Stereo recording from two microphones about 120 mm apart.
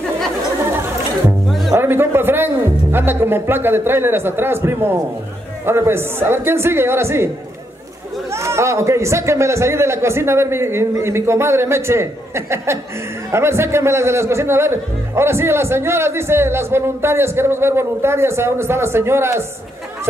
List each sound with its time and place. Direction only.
1.7 s speech: 20° right (ahead or behind)
8.3 s speech: 20° right (ahead or behind)